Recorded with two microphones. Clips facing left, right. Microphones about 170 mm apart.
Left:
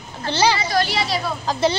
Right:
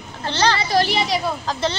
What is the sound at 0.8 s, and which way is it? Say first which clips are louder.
Speech: right 2 dB; 20° right (ahead or behind).